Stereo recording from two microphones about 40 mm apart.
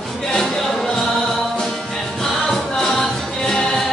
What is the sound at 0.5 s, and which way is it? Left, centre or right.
Music, centre.